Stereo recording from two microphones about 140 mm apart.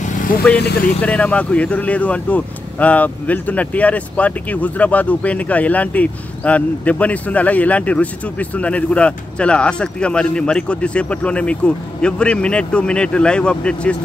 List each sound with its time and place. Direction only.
0.0 s vehicle: 70° left (ahead or behind)
0.4 s speech: 10° left (ahead or behind)